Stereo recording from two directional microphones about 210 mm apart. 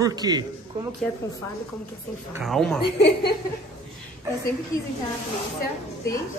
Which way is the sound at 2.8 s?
55° left (ahead or behind).